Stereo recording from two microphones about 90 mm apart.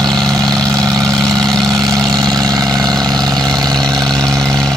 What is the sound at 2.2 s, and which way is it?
Vehicle, 50° right (ahead or behind).